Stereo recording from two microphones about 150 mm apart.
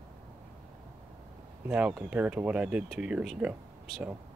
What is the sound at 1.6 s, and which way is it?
Speech, 10° right (ahead or behind).